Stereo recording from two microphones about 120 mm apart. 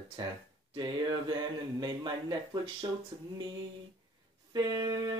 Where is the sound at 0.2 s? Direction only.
40° right (ahead or behind).